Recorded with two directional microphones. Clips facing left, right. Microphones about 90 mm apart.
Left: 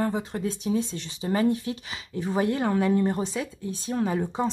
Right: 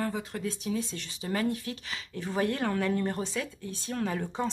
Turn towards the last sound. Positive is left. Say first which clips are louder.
# left 5 dB
turn(degrees=15)  # may be behind; listen again after turning